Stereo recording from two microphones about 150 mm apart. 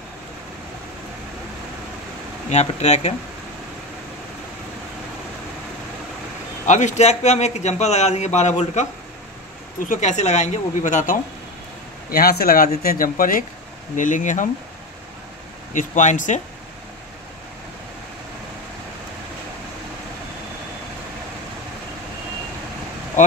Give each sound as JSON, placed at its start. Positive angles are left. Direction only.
{"t": 2.5, "sound": "a man's voice", "side_deg": 50}
{"t": 6.6, "sound": "a man's voice", "side_deg": 55}
{"t": 9.8, "sound": "a man's voice", "side_deg": 55}
{"t": 12.1, "sound": "speech", "side_deg": 90}
{"t": 12.8, "sound": "speech", "side_deg": 70}
{"t": 15.7, "sound": "speech", "side_deg": 60}